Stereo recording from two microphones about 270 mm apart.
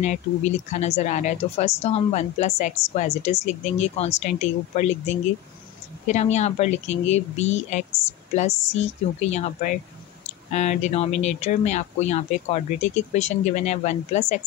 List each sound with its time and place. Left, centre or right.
0.0 s speech: left